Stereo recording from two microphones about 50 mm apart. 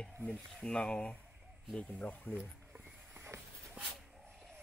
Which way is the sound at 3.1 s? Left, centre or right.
Right.